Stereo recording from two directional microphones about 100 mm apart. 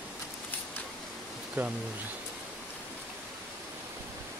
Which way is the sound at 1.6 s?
20° right (ahead or behind).